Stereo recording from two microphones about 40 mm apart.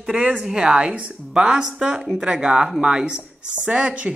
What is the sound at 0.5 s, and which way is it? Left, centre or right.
Speech, right.